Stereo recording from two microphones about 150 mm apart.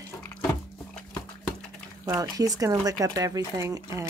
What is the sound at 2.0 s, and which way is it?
Speech, 25° right (ahead or behind).